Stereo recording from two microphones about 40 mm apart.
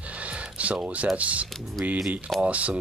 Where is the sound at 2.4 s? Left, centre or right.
Right.